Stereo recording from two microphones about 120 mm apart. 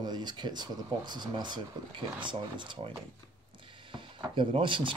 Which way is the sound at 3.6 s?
45° right (ahead or behind).